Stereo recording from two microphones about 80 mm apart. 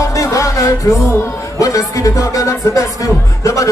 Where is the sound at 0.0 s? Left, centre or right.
Left.